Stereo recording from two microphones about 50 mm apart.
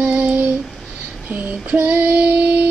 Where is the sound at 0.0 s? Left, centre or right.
Right.